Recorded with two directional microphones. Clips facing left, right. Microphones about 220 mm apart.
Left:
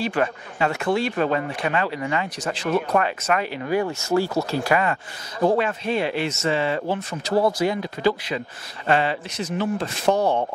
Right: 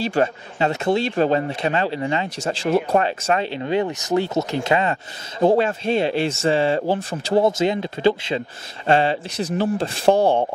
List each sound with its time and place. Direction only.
0.0 s speech: 25° right (ahead or behind)